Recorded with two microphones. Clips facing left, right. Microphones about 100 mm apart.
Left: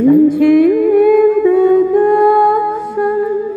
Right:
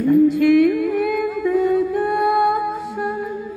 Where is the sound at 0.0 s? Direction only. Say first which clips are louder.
Left 6 dB; 50° left (ahead or behind).